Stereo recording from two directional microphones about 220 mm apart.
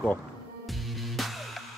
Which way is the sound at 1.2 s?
Centre (ahead or behind).